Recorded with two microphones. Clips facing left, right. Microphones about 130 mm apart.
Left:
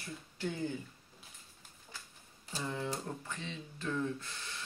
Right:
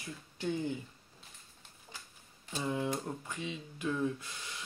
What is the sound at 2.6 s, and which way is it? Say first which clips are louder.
Speech: right 4 dB; 15° right (ahead or behind).